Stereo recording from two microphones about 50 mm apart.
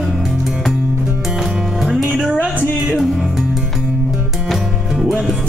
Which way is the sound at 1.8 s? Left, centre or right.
Centre.